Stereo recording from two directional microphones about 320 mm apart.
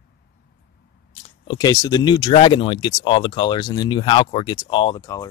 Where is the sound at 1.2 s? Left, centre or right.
Centre.